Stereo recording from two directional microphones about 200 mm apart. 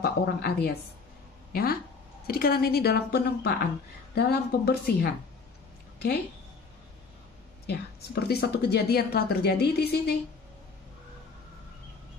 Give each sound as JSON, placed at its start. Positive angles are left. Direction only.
{"t": 0.0, "sound": "a woman's voice", "side_deg": 50}
{"t": 7.6, "sound": "a woman's voice", "side_deg": 55}